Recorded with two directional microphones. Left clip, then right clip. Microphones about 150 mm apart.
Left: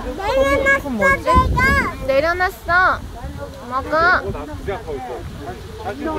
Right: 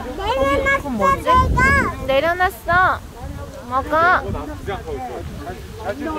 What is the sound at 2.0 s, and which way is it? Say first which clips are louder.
Speech: left 2 dB; 10° right (ahead or behind).